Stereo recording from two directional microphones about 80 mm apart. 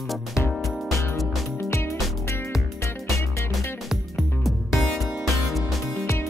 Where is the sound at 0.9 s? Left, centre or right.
Left.